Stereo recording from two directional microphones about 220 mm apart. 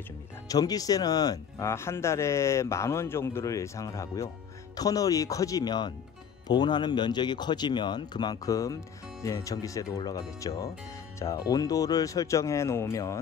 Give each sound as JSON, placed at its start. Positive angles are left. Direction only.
{"t": 0.5, "sound": "speech", "side_deg": 15}